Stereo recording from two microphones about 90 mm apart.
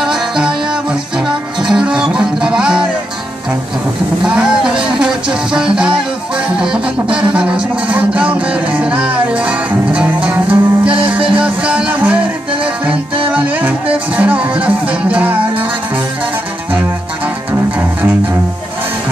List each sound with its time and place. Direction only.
0.0 s music: 5° right (ahead or behind)
4.2 s music: 10° right (ahead or behind)
13.3 s music: 15° right (ahead or behind)
17.5 s music: 15° right (ahead or behind)